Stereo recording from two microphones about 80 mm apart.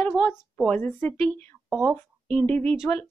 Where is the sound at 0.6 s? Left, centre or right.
Centre.